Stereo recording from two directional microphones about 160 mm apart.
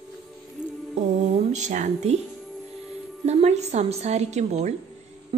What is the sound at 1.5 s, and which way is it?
Speech, 50° right (ahead or behind).